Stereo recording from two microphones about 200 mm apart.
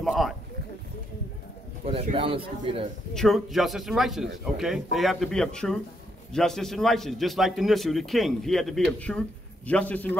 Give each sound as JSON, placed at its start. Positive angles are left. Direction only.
{"t": 0.0, "sound": "a man's voice", "side_deg": 0}
{"t": 1.9, "sound": "a man's voice", "side_deg": -30}
{"t": 3.2, "sound": "a man's voice", "side_deg": 0}